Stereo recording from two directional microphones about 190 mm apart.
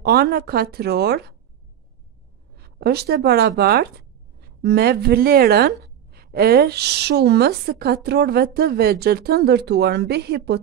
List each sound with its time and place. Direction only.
0.0 s a woman's voice: 55° right (ahead or behind)
2.5 s a woman's voice: 55° right (ahead or behind)